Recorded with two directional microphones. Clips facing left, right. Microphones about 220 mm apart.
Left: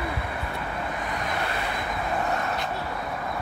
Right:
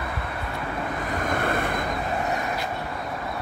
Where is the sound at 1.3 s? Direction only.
50° right (ahead or behind).